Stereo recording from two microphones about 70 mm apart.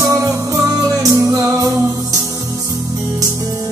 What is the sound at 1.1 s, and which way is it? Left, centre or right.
Music, right.